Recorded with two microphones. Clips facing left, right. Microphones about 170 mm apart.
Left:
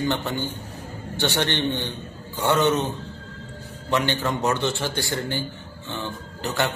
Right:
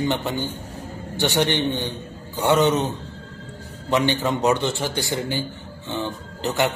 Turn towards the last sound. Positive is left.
turn(degrees=-20)  # may be behind; listen again after turning